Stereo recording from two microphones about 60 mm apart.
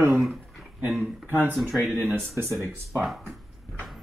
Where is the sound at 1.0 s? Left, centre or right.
Right.